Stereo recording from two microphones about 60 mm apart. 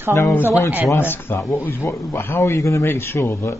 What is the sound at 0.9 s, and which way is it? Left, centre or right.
Speech, left.